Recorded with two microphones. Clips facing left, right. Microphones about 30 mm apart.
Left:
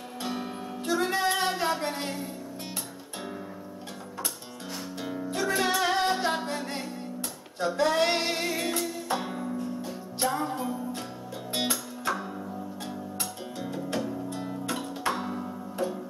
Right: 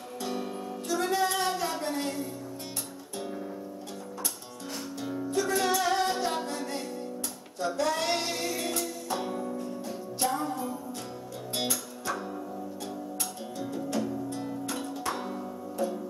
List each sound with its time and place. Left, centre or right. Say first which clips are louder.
0.2 s music: even; left
5.4 s music: left 1 dB; left
15.0 s music: left 6 dB; left